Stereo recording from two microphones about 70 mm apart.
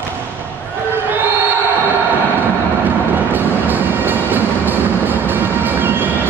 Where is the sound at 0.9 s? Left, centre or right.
Right.